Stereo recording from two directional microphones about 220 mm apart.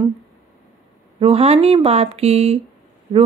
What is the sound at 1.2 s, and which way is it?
Speech, 25° right (ahead or behind).